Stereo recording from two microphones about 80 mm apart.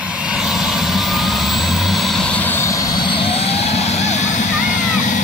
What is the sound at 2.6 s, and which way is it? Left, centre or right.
Vehicle, left.